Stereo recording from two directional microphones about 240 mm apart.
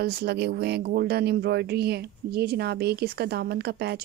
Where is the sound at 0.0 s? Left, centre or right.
Right.